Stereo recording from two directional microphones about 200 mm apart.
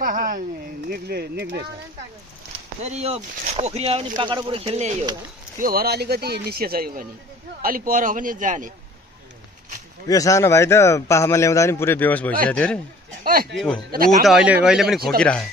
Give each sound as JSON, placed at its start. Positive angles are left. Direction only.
{"t": 0.0, "sound": "a sound", "side_deg": -45}
{"t": 0.8, "sound": "speech", "side_deg": -50}
{"t": 2.8, "sound": "speech", "side_deg": -30}
{"t": 5.6, "sound": "speech", "side_deg": -50}
{"t": 10.0, "sound": "a man's voice", "side_deg": 15}
{"t": 13.2, "sound": "speech", "side_deg": -50}
{"t": 14.2, "sound": "speech", "side_deg": -5}